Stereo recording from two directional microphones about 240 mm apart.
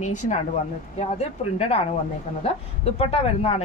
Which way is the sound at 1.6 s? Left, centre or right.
Left.